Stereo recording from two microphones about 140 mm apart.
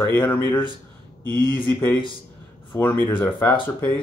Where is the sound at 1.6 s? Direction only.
15° left (ahead or behind).